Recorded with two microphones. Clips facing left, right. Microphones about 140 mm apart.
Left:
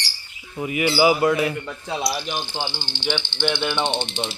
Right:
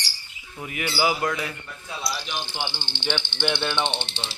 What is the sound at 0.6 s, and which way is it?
Speech, 5° left (ahead or behind).